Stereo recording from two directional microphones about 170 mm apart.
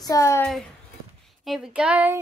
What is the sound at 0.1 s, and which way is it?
Speech, 15° left (ahead or behind).